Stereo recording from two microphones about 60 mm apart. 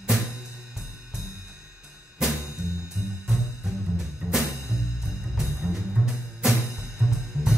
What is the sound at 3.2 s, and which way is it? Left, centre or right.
Music, centre.